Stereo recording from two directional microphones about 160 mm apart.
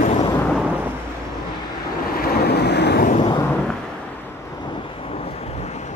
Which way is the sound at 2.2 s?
70° left (ahead or behind).